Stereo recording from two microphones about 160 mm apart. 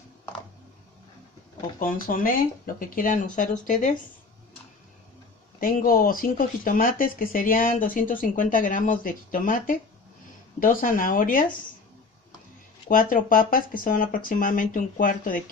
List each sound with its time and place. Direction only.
2.0 s speech: 60° left (ahead or behind)
5.6 s speech: 65° left (ahead or behind)
12.9 s speech: 60° left (ahead or behind)